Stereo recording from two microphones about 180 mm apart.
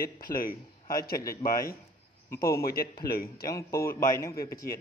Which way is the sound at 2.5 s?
60° left (ahead or behind).